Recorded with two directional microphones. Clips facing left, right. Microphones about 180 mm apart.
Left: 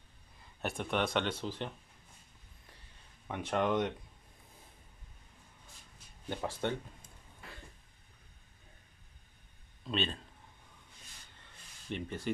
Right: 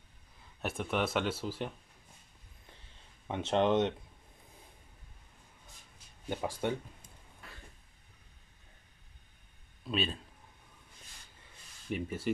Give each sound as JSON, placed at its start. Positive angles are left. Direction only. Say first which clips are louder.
{"t": 0.4, "sound": "speech", "louder": "right 1 dB", "side_deg": 0}
{"t": 3.3, "sound": "speech", "louder": "right 3 dB", "side_deg": -25}
{"t": 6.2, "sound": "speech", "louder": "right 1 dB", "side_deg": -10}
{"t": 9.8, "sound": "speech", "louder": "right 1 dB", "side_deg": -5}
{"t": 11.9, "sound": "speech", "louder": "right 3 dB", "side_deg": -5}